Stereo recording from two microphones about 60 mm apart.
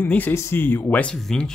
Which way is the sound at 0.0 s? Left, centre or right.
Left.